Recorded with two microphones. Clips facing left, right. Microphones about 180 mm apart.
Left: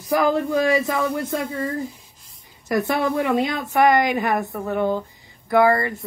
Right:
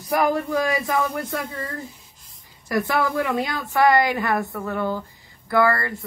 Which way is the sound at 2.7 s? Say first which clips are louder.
Left 2 dB; 20° left (ahead or behind).